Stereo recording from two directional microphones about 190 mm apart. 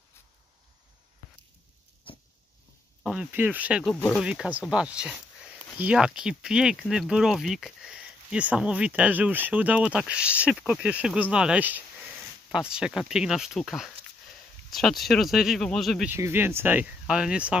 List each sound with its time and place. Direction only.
2.1 s a sound: 25° left (ahead or behind)
3.0 s speech: 5° right (ahead or behind)
3.8 s speech: 5° left (ahead or behind)
4.2 s speech: 5° right (ahead or behind)